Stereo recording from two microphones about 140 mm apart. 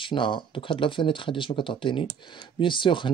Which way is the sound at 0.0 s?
35° left (ahead or behind).